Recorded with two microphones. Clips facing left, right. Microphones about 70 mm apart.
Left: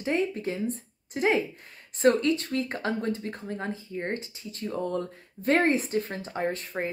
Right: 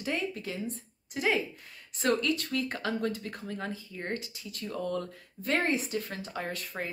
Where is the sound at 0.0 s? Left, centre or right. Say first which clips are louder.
Left 6 dB; left.